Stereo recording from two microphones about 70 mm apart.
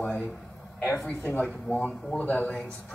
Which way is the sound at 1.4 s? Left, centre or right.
Centre.